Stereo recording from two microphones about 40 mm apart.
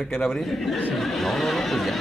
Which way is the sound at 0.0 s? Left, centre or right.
Centre.